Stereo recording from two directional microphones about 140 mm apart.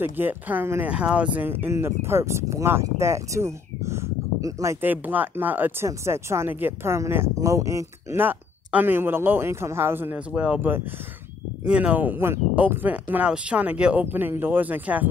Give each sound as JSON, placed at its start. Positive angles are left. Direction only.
{"t": 0.0, "sound": "speech", "side_deg": -15}
{"t": 4.8, "sound": "speech", "side_deg": -15}